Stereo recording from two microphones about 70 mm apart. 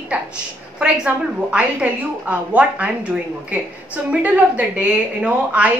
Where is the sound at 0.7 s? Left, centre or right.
Centre.